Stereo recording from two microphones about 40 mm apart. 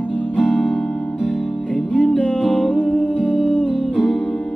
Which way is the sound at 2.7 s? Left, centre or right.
Right.